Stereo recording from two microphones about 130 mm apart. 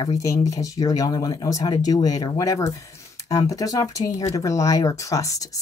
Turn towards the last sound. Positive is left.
turn(degrees=25)  # may be behind; listen again after turning